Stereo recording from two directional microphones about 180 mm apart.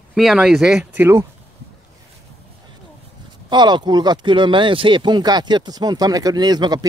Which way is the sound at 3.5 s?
25° right (ahead or behind).